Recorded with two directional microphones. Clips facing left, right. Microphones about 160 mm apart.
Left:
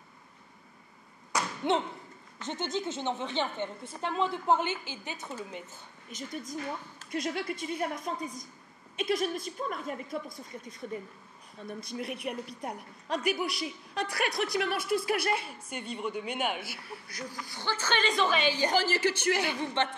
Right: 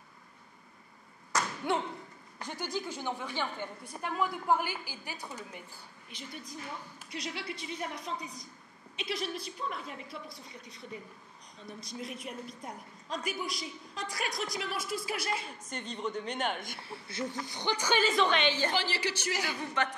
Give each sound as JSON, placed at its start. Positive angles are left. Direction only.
{"t": 1.6, "sound": "speech", "side_deg": 20}
{"t": 6.0, "sound": "a woman's voice", "side_deg": 45}
{"t": 11.8, "sound": "a woman's voice", "side_deg": 60}
{"t": 15.4, "sound": "speech", "side_deg": 10}
{"t": 16.8, "sound": "a woman's voice", "side_deg": -25}
{"t": 18.7, "sound": "a woman's voice", "side_deg": 45}
{"t": 19.6, "sound": "speech", "side_deg": 25}